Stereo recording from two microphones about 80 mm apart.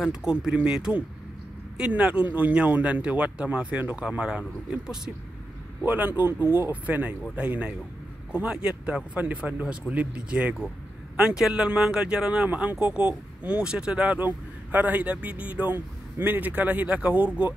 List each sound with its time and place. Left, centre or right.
0.0 s speech: centre
5.9 s speech: right
14.2 s speech: right